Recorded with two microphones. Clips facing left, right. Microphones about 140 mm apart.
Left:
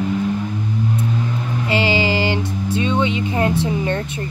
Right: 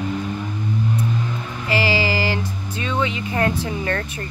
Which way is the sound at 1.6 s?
20° left (ahead or behind).